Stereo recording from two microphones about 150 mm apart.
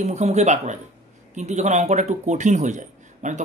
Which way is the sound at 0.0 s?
50° right (ahead or behind).